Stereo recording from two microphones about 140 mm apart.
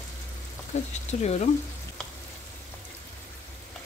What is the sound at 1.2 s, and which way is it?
Speech, 50° left (ahead or behind).